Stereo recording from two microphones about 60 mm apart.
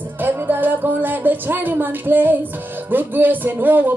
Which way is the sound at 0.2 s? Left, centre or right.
Right.